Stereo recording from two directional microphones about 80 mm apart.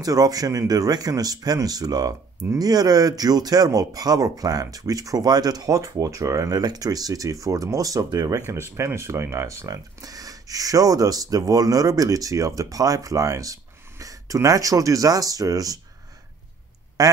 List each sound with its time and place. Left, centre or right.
0.0 s speech: right
17.0 s speech: right